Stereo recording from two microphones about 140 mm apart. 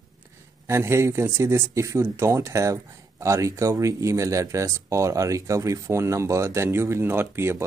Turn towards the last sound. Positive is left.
turn(degrees=-15)  # may be behind; listen again after turning